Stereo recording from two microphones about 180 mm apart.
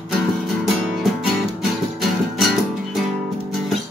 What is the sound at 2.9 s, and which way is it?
Music, centre (ahead or behind).